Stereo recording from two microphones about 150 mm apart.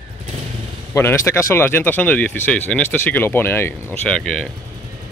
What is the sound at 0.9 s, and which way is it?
Speech, 20° left (ahead or behind).